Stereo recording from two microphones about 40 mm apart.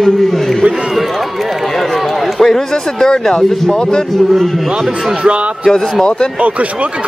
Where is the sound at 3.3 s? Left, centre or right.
Centre.